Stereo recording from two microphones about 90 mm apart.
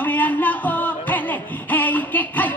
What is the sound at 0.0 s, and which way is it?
Music, 20° left (ahead or behind).